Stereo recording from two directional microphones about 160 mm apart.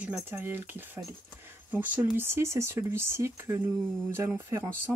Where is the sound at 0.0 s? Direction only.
10° right (ahead or behind).